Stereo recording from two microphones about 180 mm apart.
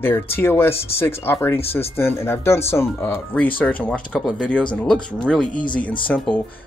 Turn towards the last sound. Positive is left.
turn(degrees=5)  # may be behind; listen again after turning